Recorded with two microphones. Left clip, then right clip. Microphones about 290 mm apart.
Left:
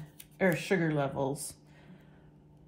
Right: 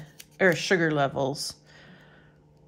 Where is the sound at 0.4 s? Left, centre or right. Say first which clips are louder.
Right 7 dB; right.